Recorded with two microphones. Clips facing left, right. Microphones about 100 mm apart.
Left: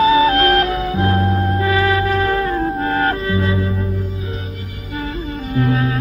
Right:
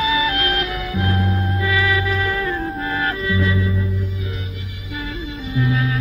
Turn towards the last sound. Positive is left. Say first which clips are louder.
# left 4 dB
turn(degrees=45)  # may be behind; listen again after turning